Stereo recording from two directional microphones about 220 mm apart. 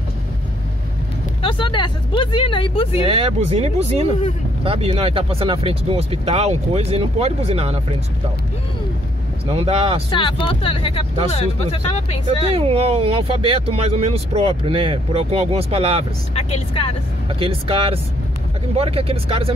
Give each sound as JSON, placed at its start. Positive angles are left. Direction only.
{"t": 1.4, "sound": "speech", "side_deg": 20}
{"t": 3.1, "sound": "speech", "side_deg": -25}
{"t": 9.5, "sound": "speech", "side_deg": -25}
{"t": 10.4, "sound": "speech", "side_deg": 25}
{"t": 12.5, "sound": "speech", "side_deg": -25}
{"t": 16.3, "sound": "speech", "side_deg": 30}
{"t": 17.3, "sound": "speech", "side_deg": -25}